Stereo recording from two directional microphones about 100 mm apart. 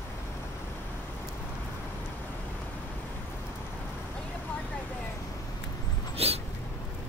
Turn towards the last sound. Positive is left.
turn(degrees=-90)